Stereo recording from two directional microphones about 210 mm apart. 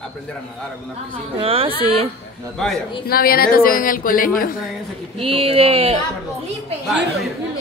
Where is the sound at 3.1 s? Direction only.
45° left (ahead or behind).